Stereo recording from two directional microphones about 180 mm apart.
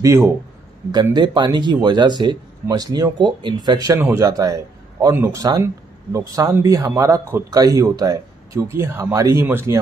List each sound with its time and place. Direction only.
0.0 s speech: 15° right (ahead or behind)